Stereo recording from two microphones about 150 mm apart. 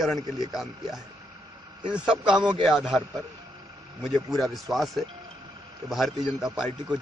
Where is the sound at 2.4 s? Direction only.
30° right (ahead or behind).